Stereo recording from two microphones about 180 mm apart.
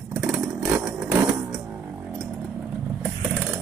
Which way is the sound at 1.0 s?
5° right (ahead or behind).